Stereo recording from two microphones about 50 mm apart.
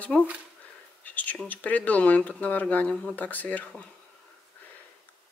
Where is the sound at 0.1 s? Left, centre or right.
Centre.